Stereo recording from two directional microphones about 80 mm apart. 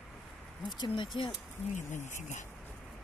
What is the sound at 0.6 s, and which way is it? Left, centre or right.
Speech, left.